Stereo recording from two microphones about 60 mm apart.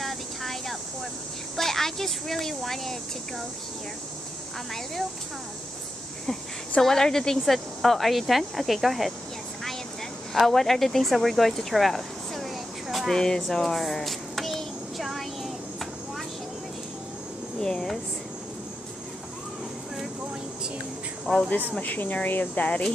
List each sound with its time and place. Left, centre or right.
0.0 s a sound: centre
1.6 s speech: centre
6.8 s speech: centre
10.3 s speech: centre
13.2 s child singing: centre
17.6 s speech: centre
21.3 s speech: centre
21.7 s speech: left